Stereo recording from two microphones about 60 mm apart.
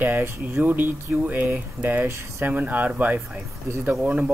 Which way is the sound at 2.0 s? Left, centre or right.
Right.